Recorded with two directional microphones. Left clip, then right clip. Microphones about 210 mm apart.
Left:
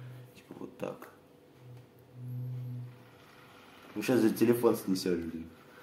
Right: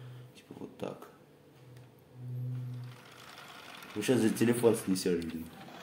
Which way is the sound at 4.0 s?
10° right (ahead or behind).